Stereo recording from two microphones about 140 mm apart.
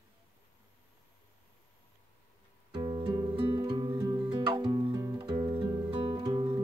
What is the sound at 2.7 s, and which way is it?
Music, 30° right (ahead or behind).